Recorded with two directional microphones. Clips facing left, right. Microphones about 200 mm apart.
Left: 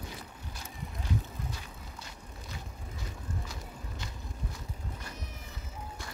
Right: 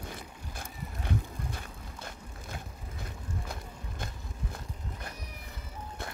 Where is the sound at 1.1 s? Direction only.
55° right (ahead or behind).